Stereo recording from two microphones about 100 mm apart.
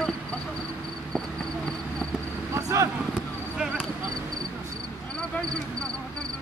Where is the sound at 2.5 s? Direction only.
35° right (ahead or behind).